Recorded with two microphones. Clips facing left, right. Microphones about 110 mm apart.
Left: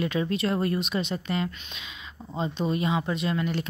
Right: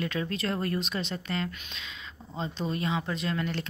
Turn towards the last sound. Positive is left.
turn(degrees=10)  # may be behind; listen again after turning